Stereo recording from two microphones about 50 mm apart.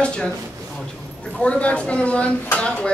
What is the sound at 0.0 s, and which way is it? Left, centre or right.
Speech, left.